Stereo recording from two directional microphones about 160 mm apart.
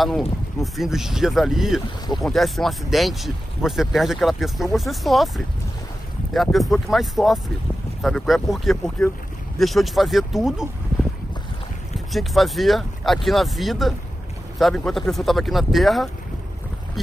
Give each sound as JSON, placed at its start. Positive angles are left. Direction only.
{"t": 0.0, "sound": "speech", "side_deg": 0}
{"t": 6.3, "sound": "speech", "side_deg": 0}
{"t": 12.1, "sound": "speech", "side_deg": 0}